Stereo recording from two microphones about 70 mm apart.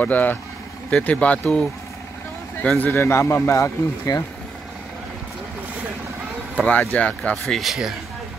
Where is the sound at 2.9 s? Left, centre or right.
Left.